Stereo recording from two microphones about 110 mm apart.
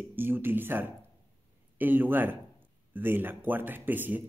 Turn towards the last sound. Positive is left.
turn(degrees=-15)  # may be behind; listen again after turning